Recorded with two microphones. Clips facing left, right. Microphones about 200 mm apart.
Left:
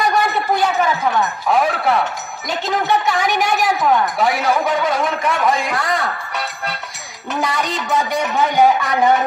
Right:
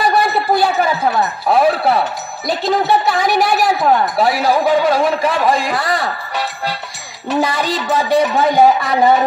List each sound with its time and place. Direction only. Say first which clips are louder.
0.1 s a man's voice: right 3 dB; 35° right (ahead or behind)
7.5 s a man's voice: right 2 dB; 35° right (ahead or behind)